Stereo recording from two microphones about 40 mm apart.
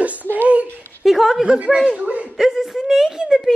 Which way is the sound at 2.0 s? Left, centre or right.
Right.